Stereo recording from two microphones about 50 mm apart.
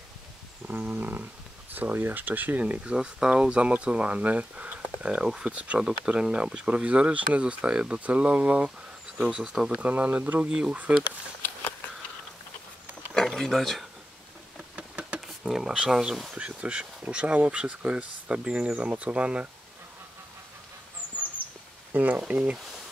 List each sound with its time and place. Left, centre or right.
0.7 s speech: right
9.2 s speech: centre
9.8 s speech: right
13.1 s a sound: centre
14.8 s a sound: right
15.1 s a sound: centre
15.7 s speech: centre
21.9 s speech: right
22.3 s speech: right